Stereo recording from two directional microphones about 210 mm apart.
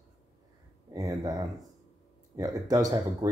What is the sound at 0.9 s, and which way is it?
Speech, 15° right (ahead or behind).